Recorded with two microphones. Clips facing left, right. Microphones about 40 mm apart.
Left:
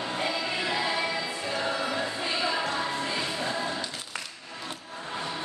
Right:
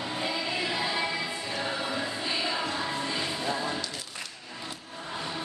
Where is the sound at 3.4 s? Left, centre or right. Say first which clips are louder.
Even; left.